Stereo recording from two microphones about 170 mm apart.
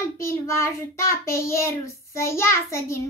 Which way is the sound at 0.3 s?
15° left (ahead or behind).